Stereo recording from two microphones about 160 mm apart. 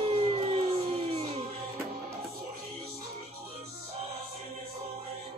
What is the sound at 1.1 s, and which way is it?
Music, 35° right (ahead or behind).